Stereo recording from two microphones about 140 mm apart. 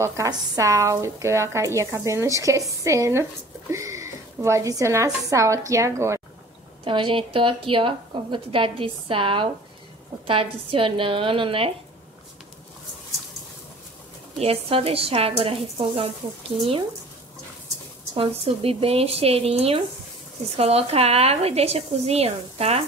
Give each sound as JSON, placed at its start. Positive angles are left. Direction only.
{"t": 0.0, "sound": "speech", "side_deg": -25}
{"t": 6.8, "sound": "a woman's voice", "side_deg": -40}
{"t": 14.4, "sound": "a woman's voice", "side_deg": -45}
{"t": 18.1, "sound": "a woman's voice", "side_deg": -45}